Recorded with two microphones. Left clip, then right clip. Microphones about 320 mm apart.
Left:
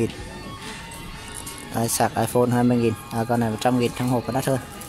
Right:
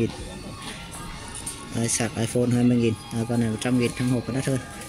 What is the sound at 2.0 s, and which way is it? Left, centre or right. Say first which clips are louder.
Speech: left 7 dB; left.